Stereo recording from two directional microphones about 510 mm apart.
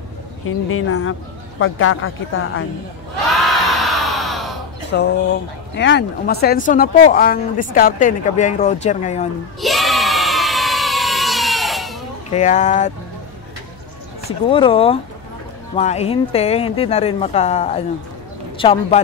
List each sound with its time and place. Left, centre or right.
0.5 s speech: left
3.3 s a sound: centre
4.9 s speech: centre
9.6 s crowd: centre
12.3 s speech: centre
14.5 s speech: centre